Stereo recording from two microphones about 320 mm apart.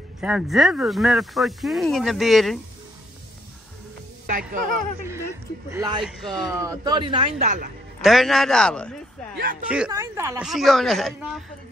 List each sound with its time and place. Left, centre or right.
0.2 s speech: centre
4.3 s speech: right
5.7 s speech: centre
6.0 s speech: centre
6.6 s speech: centre
8.0 s speech: centre